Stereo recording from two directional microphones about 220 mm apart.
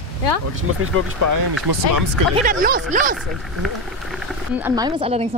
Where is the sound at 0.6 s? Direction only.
70° right (ahead or behind).